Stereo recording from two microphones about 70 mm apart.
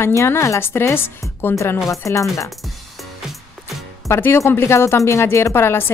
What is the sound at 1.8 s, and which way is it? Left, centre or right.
Speech, left.